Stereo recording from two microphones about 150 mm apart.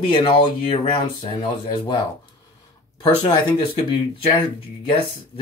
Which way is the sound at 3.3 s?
30° left (ahead or behind).